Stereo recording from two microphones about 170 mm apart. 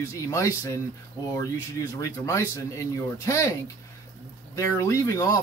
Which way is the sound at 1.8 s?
20° left (ahead or behind).